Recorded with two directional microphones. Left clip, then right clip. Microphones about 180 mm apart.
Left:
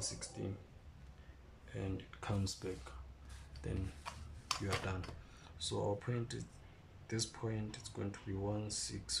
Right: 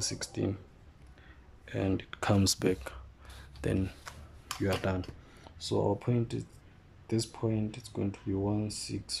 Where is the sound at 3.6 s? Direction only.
55° right (ahead or behind).